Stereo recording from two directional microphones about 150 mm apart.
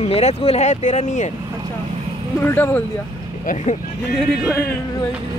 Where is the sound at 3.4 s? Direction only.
55° left (ahead or behind).